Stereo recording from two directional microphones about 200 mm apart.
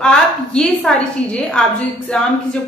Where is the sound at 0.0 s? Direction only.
5° left (ahead or behind).